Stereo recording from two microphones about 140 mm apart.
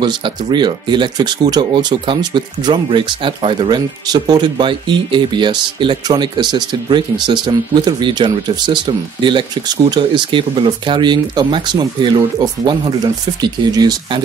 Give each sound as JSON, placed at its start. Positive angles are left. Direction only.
{"t": 0.0, "sound": "speech", "side_deg": -30}